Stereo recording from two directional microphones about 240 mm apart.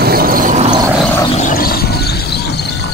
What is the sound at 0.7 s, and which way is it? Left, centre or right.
Vehicle, centre.